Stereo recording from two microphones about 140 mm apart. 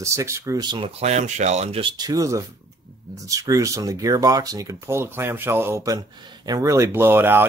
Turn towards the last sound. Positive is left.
turn(degrees=-15)  # may be behind; listen again after turning